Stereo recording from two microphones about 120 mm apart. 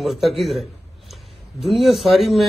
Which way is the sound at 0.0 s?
Centre (ahead or behind).